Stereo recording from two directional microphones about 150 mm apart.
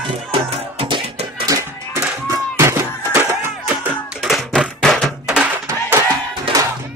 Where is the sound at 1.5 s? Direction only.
20° right (ahead or behind).